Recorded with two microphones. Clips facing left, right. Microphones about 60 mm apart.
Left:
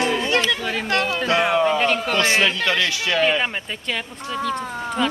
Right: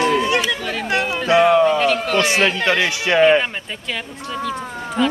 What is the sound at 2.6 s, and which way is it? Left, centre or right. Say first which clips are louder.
Speech: right 3 dB; right.